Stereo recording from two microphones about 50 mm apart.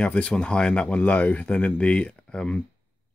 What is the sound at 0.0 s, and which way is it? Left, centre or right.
Speech, left.